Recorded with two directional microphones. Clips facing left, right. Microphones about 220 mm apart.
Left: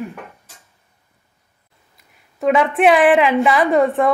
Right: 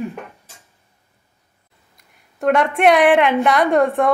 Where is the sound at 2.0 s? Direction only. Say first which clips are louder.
Left 1 dB; centre (ahead or behind).